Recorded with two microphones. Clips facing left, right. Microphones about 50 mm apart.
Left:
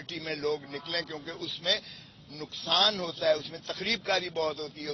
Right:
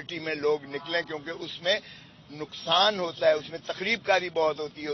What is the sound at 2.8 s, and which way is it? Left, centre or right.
Speech, centre.